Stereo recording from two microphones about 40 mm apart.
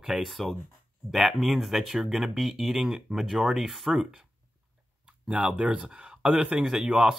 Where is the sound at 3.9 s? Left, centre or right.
Centre.